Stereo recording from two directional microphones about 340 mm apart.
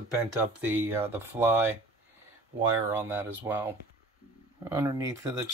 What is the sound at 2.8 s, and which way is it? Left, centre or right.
Speech, centre.